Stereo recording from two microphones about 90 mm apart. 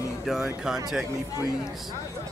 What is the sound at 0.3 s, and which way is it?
Speech, 5° right (ahead or behind).